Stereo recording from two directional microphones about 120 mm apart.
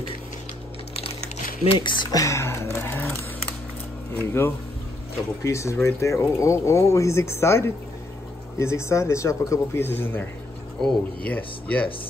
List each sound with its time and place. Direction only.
1.7 s speech: 40° left (ahead or behind)
2.1 s speech: 25° left (ahead or behind)